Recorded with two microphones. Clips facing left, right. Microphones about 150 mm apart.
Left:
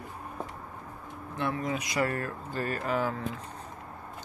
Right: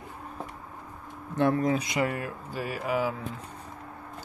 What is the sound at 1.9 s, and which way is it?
Speech, 15° right (ahead or behind).